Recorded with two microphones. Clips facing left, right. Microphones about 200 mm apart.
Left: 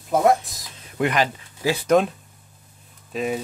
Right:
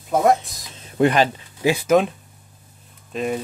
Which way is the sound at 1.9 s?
Centre (ahead or behind).